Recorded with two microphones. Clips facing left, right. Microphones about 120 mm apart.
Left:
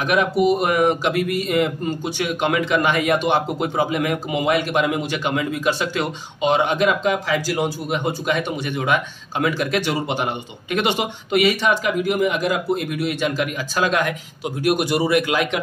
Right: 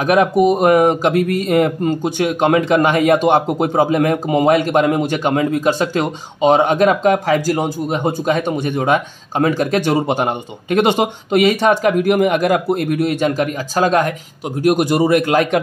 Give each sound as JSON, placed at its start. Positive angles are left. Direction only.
{"t": 0.0, "sound": "speech", "side_deg": -40}
{"t": 11.7, "sound": "a man's voice", "side_deg": -55}